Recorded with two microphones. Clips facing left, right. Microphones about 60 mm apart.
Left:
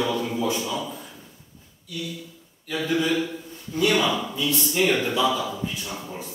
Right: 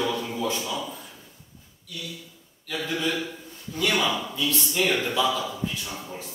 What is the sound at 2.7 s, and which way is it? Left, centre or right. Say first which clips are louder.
A man's voice: left 4 dB; centre.